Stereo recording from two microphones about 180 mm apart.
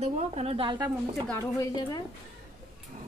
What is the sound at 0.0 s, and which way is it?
Speech, 35° right (ahead or behind).